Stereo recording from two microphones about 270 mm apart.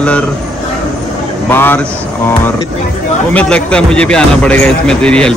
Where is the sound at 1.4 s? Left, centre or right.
Centre.